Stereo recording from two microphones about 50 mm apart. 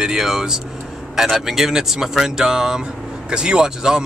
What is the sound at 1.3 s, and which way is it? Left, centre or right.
Speech, centre.